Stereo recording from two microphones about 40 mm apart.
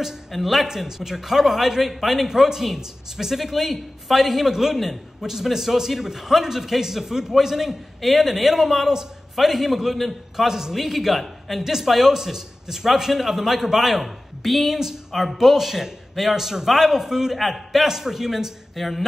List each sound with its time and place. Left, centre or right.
0.3 s speech: centre
0.7 s speech: centre